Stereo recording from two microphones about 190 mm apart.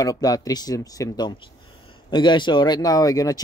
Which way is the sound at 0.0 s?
20° left (ahead or behind).